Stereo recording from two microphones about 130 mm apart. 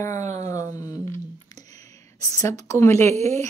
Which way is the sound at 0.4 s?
25° left (ahead or behind).